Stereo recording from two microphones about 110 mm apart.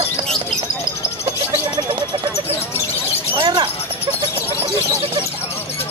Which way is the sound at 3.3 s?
50° right (ahead or behind).